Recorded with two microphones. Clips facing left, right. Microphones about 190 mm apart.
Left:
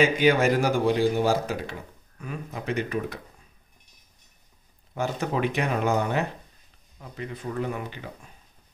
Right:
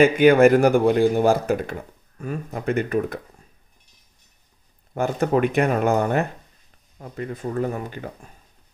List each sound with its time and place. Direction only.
0.0 s a man's voice: 55° right (ahead or behind)
4.9 s a man's voice: 50° right (ahead or behind)